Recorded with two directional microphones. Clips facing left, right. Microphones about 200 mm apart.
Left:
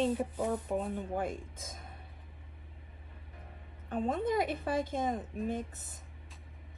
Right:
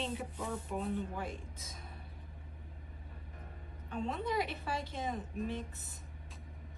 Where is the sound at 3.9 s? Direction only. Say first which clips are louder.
Left 5 dB; 50° left (ahead or behind).